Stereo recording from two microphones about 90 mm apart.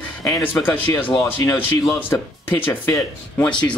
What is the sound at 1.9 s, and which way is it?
Speech, 20° left (ahead or behind).